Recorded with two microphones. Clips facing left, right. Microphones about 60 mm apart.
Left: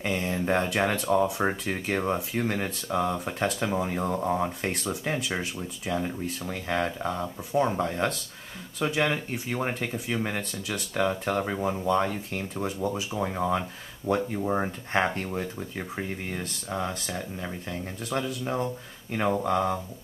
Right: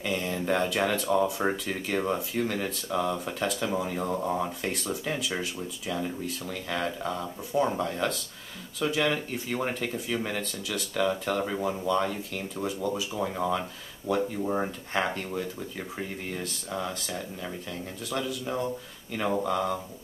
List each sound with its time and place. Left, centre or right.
0.0 s speech: left; by 4.4 s centre
4.4 s speech: left
14.0 s speech: left
14.4 s speech: centre
16.0 s speech: left